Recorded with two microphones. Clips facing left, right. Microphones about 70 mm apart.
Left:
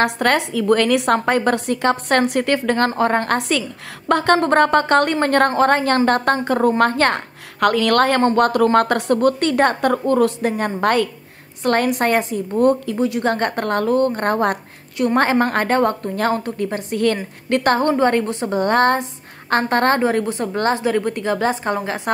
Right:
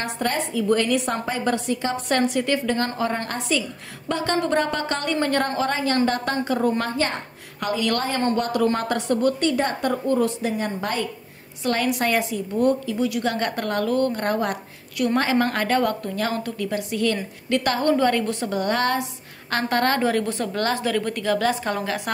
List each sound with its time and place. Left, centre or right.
0.0 s a woman's voice: left
6.8 s a woman's voice: left
8.4 s a woman's voice: left
11.6 s a woman's voice: left
17.0 s a woman's voice: left